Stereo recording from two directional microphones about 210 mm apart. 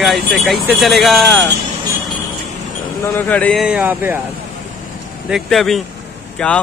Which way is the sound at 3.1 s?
10° left (ahead or behind).